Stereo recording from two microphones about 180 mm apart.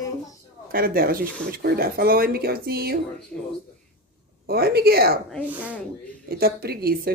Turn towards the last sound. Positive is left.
turn(degrees=-60)  # may be behind; listen again after turning